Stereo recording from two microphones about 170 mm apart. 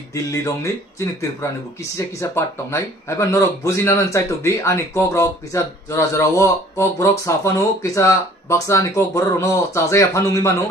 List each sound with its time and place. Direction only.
0.1 s speech: 15° left (ahead or behind)